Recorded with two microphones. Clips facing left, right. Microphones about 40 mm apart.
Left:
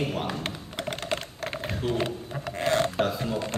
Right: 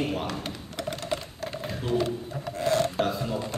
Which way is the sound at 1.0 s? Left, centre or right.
Left.